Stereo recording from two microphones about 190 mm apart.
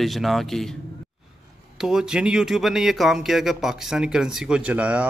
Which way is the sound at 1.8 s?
5° right (ahead or behind).